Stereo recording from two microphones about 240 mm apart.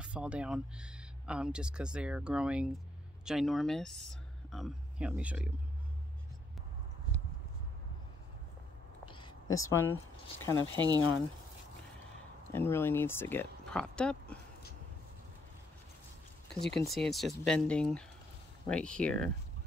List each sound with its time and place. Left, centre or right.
0.0 s speech: centre
9.0 s a sound: centre
9.6 s speech: centre
10.7 s speech: centre
12.5 s speech: centre
16.6 s speech: centre